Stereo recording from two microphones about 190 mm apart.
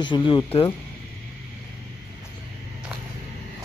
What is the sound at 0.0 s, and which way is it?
Speech, 25° left (ahead or behind).